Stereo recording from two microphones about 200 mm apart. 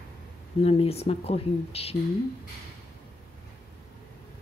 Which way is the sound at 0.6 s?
30° left (ahead or behind).